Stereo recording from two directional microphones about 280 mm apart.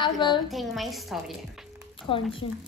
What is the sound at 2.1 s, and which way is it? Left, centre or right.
Speech, centre.